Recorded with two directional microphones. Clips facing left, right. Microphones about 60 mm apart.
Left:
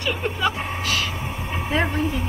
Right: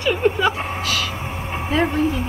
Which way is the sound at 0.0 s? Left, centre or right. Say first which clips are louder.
Right 6 dB; centre.